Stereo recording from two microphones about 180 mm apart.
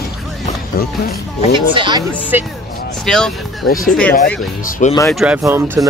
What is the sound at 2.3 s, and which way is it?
Speech, 10° right (ahead or behind).